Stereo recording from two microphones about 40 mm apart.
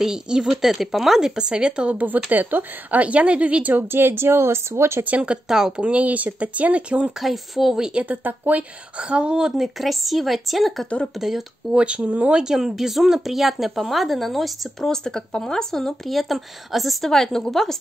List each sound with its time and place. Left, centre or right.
0.0 s speech: centre
1.3 s speech: right
2.0 s speech: right
3.7 s speech: right
5.7 s speech: right
7.2 s speech: centre
7.9 s speech: right
9.0 s speech: right
9.6 s speech: centre
11.7 s speech: right
12.4 s speech: centre
14.8 s speech: centre
17.1 s speech: centre